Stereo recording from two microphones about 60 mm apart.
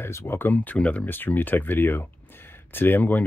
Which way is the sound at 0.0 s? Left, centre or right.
Left.